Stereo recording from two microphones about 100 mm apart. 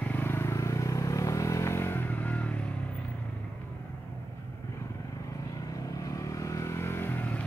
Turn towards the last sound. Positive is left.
turn(degrees=20)  # may be behind; listen again after turning